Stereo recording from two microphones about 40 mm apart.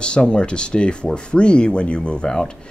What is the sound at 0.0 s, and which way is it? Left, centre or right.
Speech, left.